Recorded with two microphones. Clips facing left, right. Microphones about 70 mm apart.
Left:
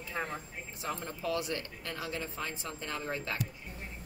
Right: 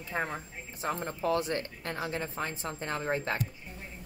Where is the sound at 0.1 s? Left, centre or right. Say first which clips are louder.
Right 4 dB; right.